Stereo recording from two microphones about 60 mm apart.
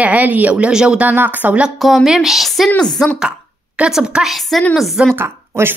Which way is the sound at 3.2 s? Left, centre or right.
Centre.